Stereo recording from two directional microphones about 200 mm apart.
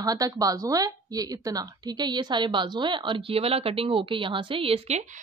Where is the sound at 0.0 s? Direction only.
20° right (ahead or behind).